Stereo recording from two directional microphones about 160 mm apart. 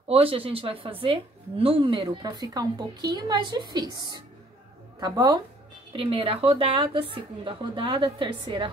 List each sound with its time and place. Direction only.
0.1 s speech: 35° right (ahead or behind)
5.9 s a woman's voice: 35° right (ahead or behind)